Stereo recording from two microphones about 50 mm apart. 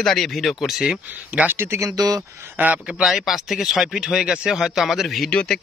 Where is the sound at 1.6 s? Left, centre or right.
Right.